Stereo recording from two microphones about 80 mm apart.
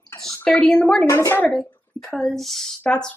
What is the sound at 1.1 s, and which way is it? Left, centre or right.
Speech, left.